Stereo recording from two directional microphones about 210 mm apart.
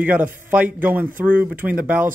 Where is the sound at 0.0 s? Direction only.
5° right (ahead or behind).